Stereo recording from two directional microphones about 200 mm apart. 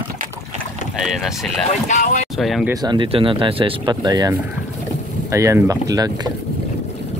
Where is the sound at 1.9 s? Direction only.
35° left (ahead or behind).